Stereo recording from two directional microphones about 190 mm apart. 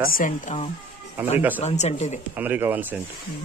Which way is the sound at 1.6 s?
35° left (ahead or behind).